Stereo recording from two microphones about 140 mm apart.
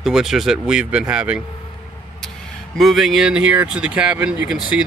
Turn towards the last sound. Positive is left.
turn(degrees=-5)  # may be behind; listen again after turning